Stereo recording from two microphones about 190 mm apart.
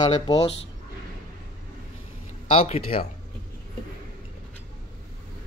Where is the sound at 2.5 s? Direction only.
30° left (ahead or behind).